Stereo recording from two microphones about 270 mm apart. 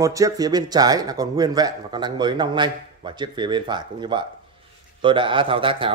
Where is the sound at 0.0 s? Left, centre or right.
Centre.